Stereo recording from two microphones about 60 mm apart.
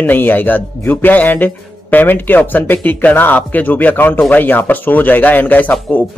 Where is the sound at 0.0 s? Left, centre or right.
Left.